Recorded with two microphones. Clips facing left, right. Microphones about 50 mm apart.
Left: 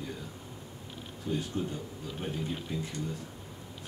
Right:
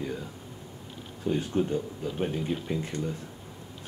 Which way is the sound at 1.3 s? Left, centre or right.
Right.